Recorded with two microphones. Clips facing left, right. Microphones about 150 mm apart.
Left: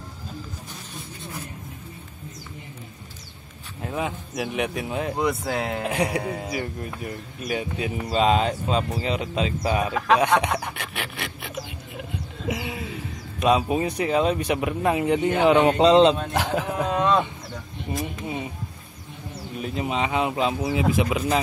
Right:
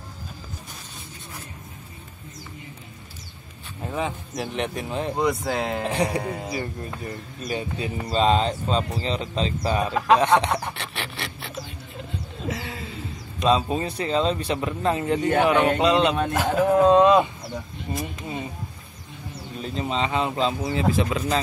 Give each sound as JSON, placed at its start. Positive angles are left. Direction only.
{"t": 3.8, "sound": "speech", "side_deg": 5}
{"t": 12.4, "sound": "music", "side_deg": 15}
{"t": 13.4, "sound": "speech", "side_deg": 15}
{"t": 16.8, "sound": "speech", "side_deg": -25}
{"t": 17.9, "sound": "speech", "side_deg": 15}
{"t": 19.5, "sound": "speech", "side_deg": 10}